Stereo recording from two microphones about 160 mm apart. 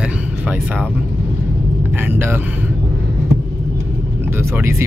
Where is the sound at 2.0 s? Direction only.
15° right (ahead or behind).